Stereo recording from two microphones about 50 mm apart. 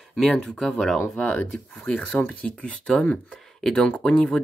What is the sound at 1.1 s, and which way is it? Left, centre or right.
Speech, left.